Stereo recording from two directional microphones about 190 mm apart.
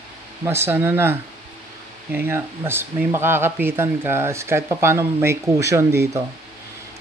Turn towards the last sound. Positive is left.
turn(degrees=-15)  # may be behind; listen again after turning